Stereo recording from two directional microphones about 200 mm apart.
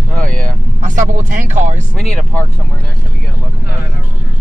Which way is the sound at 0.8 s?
40° right (ahead or behind).